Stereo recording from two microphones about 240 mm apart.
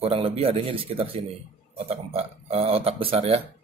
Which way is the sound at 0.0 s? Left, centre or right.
Right.